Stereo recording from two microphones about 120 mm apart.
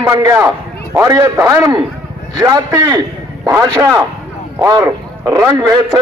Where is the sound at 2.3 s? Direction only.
35° right (ahead or behind).